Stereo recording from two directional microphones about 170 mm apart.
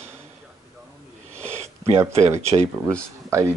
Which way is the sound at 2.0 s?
15° right (ahead or behind).